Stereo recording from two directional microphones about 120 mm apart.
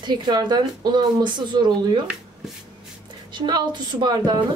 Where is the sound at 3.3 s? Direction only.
40° right (ahead or behind).